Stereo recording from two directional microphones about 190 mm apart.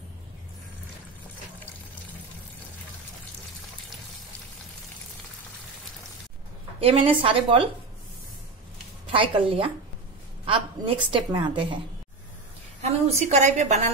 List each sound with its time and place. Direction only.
6.8 s a woman's voice: 30° right (ahead or behind)
9.1 s a woman's voice: 30° right (ahead or behind)
12.8 s a woman's voice: 35° right (ahead or behind)